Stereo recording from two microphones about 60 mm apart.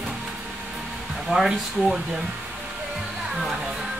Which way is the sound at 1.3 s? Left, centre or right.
Centre.